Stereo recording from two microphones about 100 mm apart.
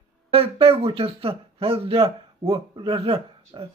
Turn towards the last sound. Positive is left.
turn(degrees=-70)  # may be behind; listen again after turning